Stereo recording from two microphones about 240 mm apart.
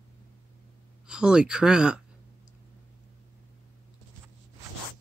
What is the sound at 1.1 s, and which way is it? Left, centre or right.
Speech, centre.